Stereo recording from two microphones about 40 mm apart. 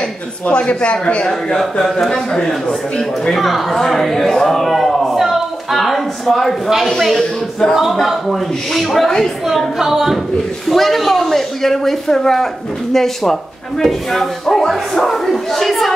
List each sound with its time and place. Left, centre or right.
0.5 s a man's voice: left
1.6 s a man's voice: centre
4.7 s a sound: centre
6.2 s speech: centre
8.0 s a man's voice: centre
10.7 s speech: centre